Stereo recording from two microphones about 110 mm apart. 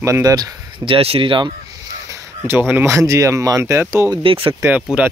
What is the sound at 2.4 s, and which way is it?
Speech, 20° right (ahead or behind).